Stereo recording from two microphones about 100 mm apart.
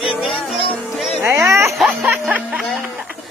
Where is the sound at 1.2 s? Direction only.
25° right (ahead or behind).